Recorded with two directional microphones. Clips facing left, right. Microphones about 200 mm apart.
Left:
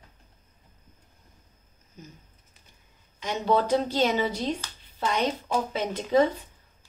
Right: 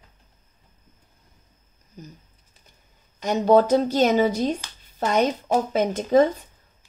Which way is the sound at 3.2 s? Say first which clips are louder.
Right 7 dB; 45° right (ahead or behind).